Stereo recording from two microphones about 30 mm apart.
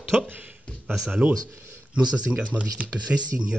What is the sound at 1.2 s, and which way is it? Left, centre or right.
Speech, right.